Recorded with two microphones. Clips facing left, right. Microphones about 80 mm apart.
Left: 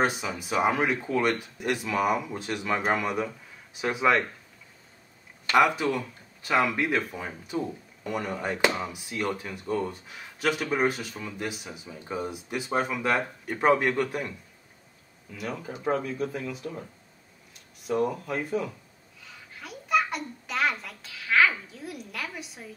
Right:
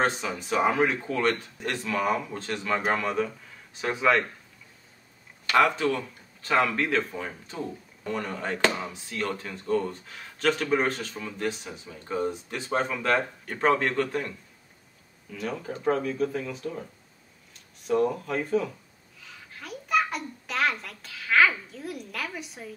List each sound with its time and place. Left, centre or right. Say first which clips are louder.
0.0 s speech: even; centre
5.5 s speech: even; centre
15.3 s speech: right 2 dB; centre
17.8 s speech: right 2 dB; centre
19.2 s a sound: right 1 dB; centre